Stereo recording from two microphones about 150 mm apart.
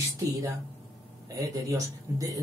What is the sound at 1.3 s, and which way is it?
Speech, 25° right (ahead or behind).